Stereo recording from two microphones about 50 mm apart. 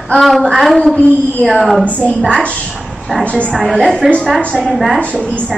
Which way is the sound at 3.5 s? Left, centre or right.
Centre.